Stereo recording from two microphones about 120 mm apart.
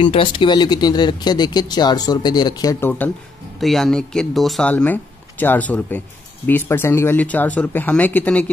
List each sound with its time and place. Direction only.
0.0 s speech: 45° left (ahead or behind)
2.8 s speech: 15° left (ahead or behind)
3.5 s speech: centre (ahead or behind)
4.6 s speech: 15° left (ahead or behind)